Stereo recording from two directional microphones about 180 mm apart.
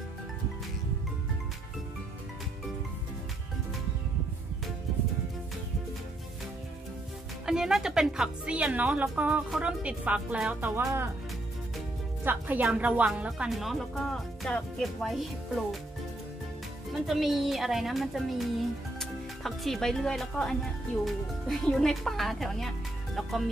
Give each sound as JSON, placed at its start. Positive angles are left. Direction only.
{"t": 7.4, "sound": "a woman's voice", "side_deg": -5}
{"t": 12.3, "sound": "a woman's voice", "side_deg": -10}
{"t": 16.9, "sound": "a woman's voice", "side_deg": 0}